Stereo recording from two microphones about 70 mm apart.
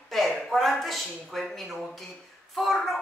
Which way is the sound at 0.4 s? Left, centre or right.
Centre.